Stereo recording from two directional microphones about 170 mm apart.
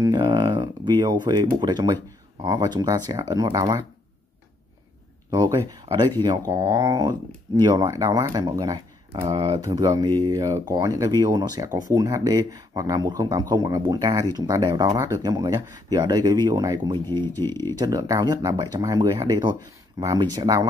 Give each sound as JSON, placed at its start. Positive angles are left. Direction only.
{"t": 0.0, "sound": "speech", "side_deg": -25}
{"t": 5.3, "sound": "speech", "side_deg": -20}